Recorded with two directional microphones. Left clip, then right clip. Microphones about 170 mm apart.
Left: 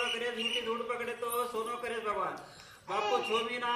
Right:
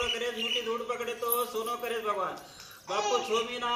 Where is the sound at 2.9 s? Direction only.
10° left (ahead or behind).